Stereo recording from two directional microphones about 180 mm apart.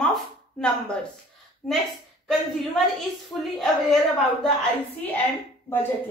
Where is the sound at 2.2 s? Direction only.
Centre (ahead or behind).